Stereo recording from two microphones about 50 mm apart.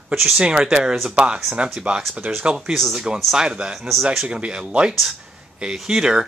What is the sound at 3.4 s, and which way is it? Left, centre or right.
Speech, centre.